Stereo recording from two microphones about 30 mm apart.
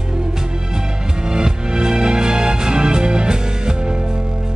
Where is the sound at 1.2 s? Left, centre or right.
Right.